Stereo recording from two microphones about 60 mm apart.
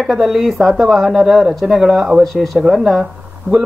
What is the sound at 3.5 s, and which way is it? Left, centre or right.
Speech, right.